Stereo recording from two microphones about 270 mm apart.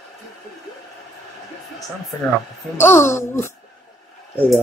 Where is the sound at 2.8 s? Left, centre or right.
Centre.